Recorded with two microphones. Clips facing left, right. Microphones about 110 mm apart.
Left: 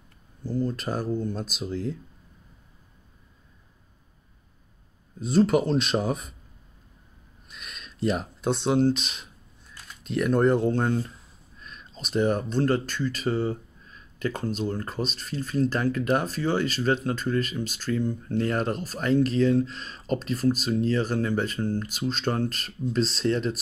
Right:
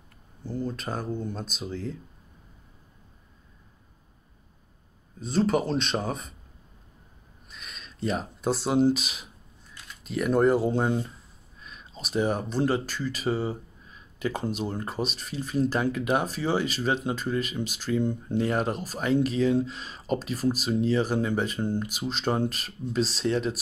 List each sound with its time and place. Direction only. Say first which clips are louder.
0.5 s speech: left 4 dB; centre (ahead or behind)
5.2 s speech: left 3 dB; centre (ahead or behind)
7.4 s speech: left 1 dB; centre (ahead or behind)